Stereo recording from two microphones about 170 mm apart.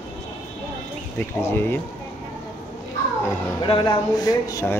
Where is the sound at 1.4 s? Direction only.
15° left (ahead or behind).